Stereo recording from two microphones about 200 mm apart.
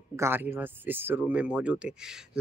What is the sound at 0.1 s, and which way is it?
Speech, 10° right (ahead or behind).